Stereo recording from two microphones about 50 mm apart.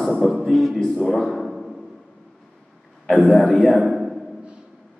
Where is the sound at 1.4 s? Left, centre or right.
Centre.